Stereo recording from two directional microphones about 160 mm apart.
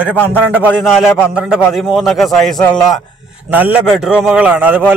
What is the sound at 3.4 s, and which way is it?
A man's voice, 10° right (ahead or behind).